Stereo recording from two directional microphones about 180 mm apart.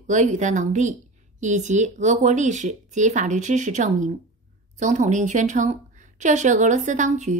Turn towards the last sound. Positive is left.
turn(degrees=-40)  # may be behind; listen again after turning